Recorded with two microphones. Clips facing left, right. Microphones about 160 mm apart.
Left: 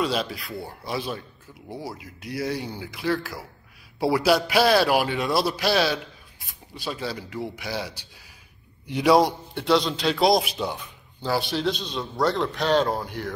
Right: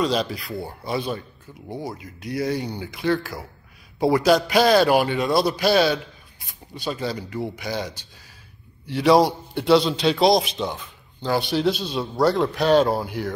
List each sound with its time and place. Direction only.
0.0 s a man's voice: 5° left (ahead or behind)
9.1 s a man's voice: centre (ahead or behind)